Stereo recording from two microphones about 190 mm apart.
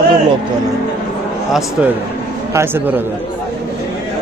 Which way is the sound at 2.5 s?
15° right (ahead or behind).